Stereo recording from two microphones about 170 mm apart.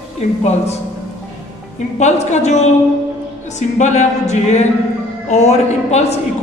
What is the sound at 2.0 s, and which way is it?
Speech, 40° left (ahead or behind).